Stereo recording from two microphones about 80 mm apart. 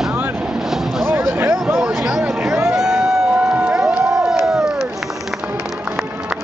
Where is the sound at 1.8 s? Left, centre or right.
Centre.